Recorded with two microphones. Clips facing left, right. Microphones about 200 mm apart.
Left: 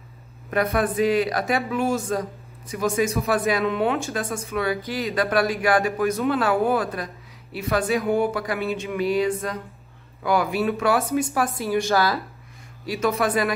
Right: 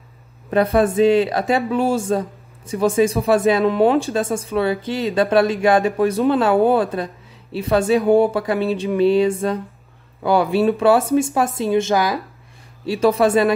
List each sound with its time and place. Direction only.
0.5 s a man's voice: 30° right (ahead or behind)
12.8 s a man's voice: 30° right (ahead or behind)